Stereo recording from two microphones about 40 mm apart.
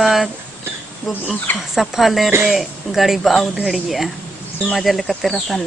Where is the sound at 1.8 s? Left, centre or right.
Centre.